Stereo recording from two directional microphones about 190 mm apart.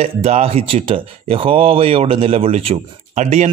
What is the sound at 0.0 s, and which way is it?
Speech, 35° right (ahead or behind).